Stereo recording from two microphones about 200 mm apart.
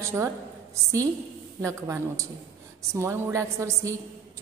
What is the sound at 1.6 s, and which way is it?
A woman's voice, 15° right (ahead or behind).